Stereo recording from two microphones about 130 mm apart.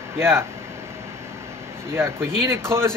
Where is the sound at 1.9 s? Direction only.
20° right (ahead or behind).